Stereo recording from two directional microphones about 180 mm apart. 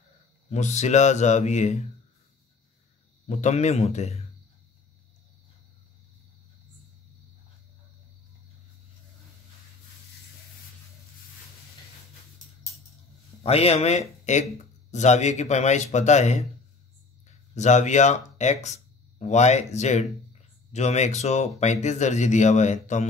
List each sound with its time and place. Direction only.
0.5 s speech: 40° left (ahead or behind)
3.3 s speech: 40° left (ahead or behind)
13.4 s speech: 35° left (ahead or behind)
17.6 s speech: 40° left (ahead or behind)